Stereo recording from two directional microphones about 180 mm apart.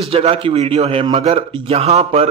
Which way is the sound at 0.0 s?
30° right (ahead or behind).